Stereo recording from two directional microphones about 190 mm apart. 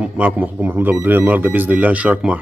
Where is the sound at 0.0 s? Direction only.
5° right (ahead or behind).